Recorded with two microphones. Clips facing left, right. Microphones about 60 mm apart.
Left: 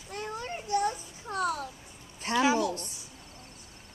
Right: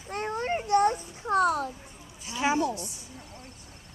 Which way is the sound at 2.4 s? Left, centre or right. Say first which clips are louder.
Even; right.